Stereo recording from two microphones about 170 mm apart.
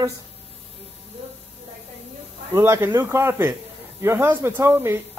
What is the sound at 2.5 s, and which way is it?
Speech, 15° right (ahead or behind).